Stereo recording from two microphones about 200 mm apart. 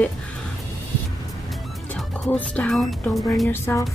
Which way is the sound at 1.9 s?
5° left (ahead or behind).